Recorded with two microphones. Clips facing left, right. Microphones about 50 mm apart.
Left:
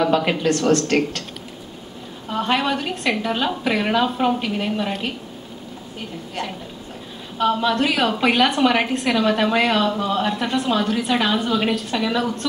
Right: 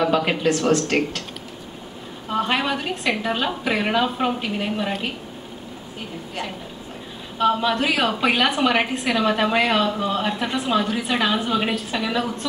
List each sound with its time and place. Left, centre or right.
0.0 s a woman's voice: centre
2.3 s a woman's voice: centre
7.3 s a woman's voice: centre